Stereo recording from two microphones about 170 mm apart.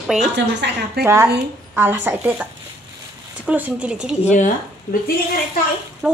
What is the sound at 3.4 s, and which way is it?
Speech, 10° right (ahead or behind).